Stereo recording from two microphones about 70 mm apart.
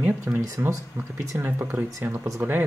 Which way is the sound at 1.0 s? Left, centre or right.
Right.